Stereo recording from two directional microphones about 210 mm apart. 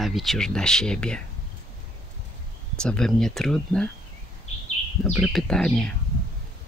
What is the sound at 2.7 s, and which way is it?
Speech, 5° left (ahead or behind).